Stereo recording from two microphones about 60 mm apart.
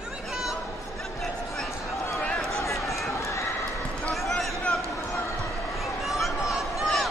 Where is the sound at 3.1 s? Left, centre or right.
Left.